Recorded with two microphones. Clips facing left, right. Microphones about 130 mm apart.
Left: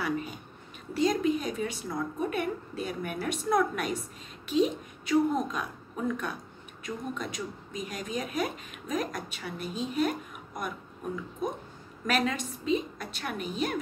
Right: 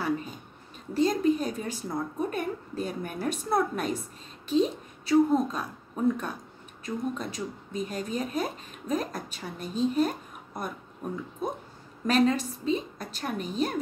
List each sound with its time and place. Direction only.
0.9 s a woman's voice: 35° right (ahead or behind)
12.1 s a woman's voice: 35° right (ahead or behind)